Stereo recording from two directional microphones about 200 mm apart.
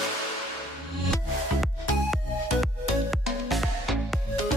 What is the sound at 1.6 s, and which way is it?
Music, centre (ahead or behind).